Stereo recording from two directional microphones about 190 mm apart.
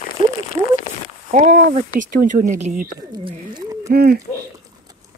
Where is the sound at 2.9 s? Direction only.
25° right (ahead or behind).